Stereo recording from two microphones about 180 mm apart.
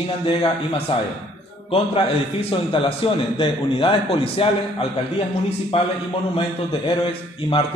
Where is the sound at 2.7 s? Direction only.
30° left (ahead or behind).